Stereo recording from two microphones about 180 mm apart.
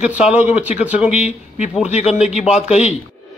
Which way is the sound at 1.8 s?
40° left (ahead or behind).